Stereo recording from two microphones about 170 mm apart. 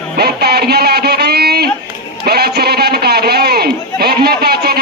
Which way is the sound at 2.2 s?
70° right (ahead or behind).